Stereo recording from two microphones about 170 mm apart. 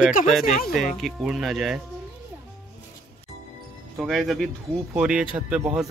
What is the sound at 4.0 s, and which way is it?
Speech, centre (ahead or behind).